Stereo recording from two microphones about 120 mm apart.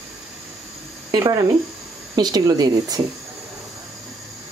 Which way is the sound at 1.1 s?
30° right (ahead or behind).